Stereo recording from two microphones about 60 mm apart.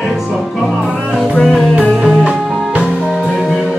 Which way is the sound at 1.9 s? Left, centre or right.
Centre.